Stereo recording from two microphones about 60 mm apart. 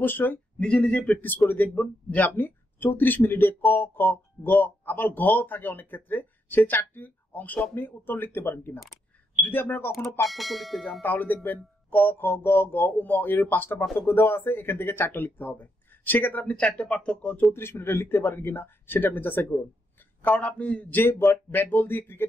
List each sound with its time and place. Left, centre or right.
0.0 s speech: left
0.6 s speech: left
2.3 s speech: left
10.2 s speech: centre
11.0 s speech: left
13.9 s speech: left
16.4 s speech: left
17.5 s speech: left
20.3 s speech: centre
21.1 s speech: left